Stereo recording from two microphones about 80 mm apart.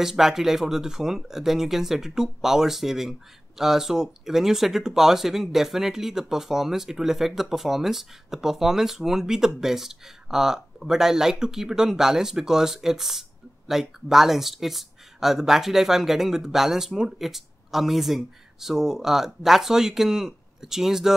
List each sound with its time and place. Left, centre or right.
0.0 s speech: centre